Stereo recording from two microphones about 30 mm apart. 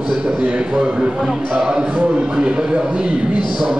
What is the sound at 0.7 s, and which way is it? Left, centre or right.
A man's voice, right.